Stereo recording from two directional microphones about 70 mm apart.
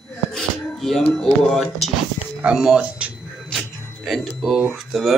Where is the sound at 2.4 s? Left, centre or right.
Centre.